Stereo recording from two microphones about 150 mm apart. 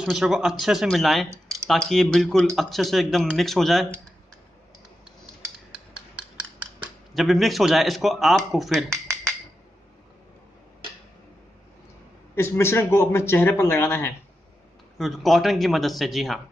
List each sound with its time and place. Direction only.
0.0 s speech: centre (ahead or behind)
7.2 s speech: centre (ahead or behind)
12.4 s speech: 15° left (ahead or behind)
15.0 s speech: centre (ahead or behind)